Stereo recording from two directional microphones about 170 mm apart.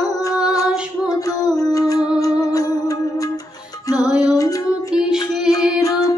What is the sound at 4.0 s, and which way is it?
Music, centre (ahead or behind).